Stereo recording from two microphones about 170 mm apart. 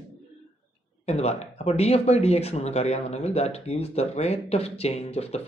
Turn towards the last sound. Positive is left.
turn(degrees=35)  # may be behind; listen again after turning